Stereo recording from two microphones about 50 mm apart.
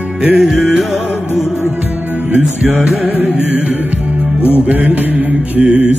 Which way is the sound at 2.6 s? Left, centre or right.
Right.